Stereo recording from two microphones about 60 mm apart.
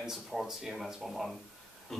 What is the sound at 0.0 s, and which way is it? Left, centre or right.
Speech, centre.